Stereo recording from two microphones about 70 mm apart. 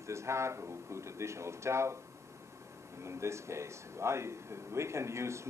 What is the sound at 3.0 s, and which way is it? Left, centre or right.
Speech, right.